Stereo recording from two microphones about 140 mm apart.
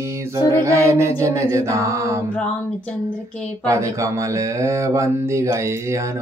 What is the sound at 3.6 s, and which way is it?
Mantra, 20° right (ahead or behind).